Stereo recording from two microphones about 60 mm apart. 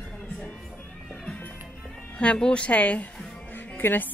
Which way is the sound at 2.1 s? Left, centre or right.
Centre.